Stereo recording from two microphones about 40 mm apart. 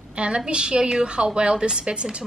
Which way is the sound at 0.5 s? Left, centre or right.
Right.